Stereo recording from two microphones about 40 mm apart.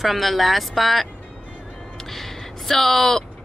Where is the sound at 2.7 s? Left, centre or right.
Centre.